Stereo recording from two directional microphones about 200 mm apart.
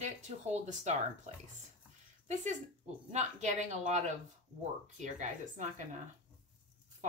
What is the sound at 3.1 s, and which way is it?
Speech, 35° right (ahead or behind).